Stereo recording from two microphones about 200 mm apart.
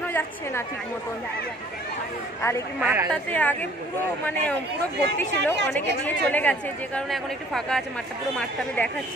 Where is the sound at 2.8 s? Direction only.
10° right (ahead or behind).